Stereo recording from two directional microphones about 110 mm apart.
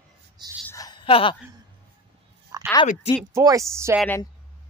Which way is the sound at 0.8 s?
35° left (ahead or behind).